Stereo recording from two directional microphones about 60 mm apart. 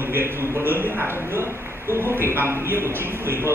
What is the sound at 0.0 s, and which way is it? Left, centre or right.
A man's voice, right.